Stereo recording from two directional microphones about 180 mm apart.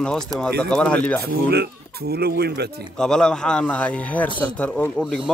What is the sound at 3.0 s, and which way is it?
A man's voice, 5° left (ahead or behind).